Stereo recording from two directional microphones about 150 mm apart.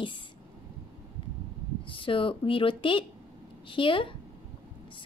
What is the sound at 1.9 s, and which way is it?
Speech, 35° left (ahead or behind).